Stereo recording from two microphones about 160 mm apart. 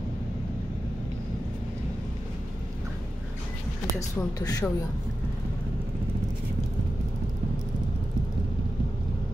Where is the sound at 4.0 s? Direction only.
20° left (ahead or behind).